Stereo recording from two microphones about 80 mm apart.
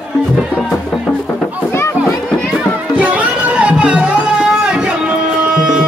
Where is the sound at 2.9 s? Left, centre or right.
Centre.